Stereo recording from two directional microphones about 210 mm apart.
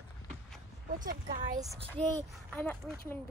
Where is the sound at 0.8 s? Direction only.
40° right (ahead or behind).